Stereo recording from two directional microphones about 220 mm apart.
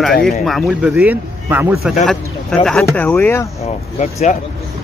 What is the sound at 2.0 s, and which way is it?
Speech, 5° left (ahead or behind).